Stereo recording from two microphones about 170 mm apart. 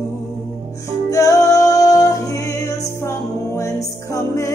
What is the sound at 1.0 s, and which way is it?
Music, 20° left (ahead or behind).